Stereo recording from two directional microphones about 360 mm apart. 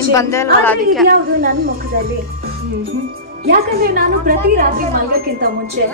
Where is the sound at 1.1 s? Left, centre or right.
Right.